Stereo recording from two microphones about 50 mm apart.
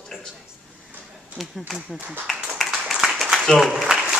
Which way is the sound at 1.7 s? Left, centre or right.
Right.